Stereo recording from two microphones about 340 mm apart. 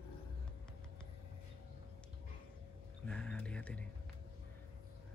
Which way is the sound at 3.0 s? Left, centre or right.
Centre.